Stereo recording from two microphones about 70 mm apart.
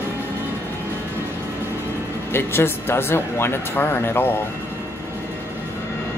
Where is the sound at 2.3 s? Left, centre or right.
Left.